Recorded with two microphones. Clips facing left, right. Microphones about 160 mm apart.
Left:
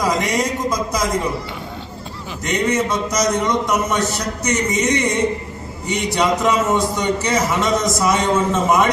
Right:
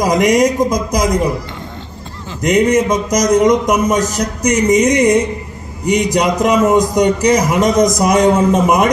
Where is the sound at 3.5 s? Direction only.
15° right (ahead or behind).